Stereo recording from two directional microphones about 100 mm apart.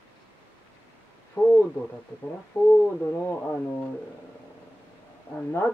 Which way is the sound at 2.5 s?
20° left (ahead or behind).